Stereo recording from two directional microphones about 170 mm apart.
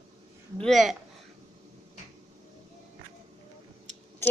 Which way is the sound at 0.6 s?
Centre (ahead or behind).